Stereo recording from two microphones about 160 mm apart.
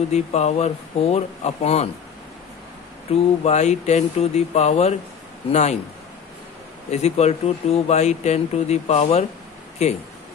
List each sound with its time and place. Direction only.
0.1 s speech: 45° left (ahead or behind)
3.1 s speech: 45° left (ahead or behind)
6.9 s speech: 40° left (ahead or behind)